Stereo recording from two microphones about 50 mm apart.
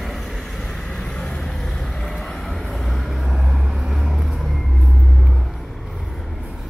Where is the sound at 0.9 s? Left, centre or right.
Centre.